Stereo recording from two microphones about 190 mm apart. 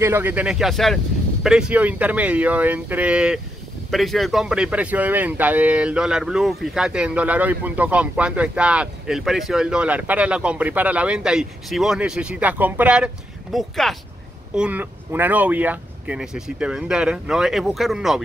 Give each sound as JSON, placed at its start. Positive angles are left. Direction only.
{"t": 0.0, "sound": "speech", "side_deg": -10}